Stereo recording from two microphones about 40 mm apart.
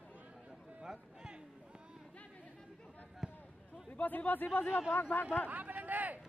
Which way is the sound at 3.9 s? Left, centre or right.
Left.